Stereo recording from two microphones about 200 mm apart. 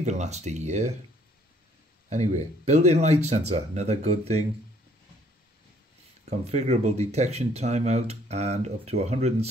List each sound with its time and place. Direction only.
0.0 s speech: 35° right (ahead or behind)
2.0 s speech: 35° right (ahead or behind)
6.4 s speech: 35° right (ahead or behind)